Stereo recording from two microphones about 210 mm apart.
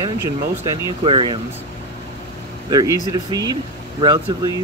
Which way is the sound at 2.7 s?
20° right (ahead or behind).